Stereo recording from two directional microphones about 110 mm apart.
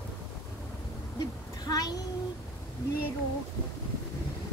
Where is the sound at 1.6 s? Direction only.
35° left (ahead or behind).